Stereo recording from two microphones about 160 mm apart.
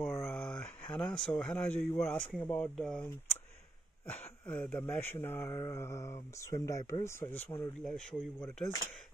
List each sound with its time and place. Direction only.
0.0 s speech: 15° left (ahead or behind)